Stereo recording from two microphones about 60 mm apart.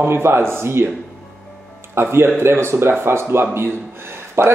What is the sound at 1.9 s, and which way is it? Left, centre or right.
Speech, right.